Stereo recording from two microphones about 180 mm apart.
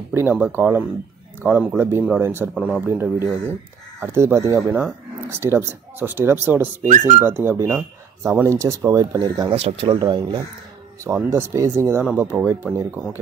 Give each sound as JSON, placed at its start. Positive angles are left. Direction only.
{"t": 0.1, "sound": "speech", "side_deg": -10}
{"t": 4.6, "sound": "speech", "side_deg": -5}
{"t": 11.1, "sound": "speech", "side_deg": -15}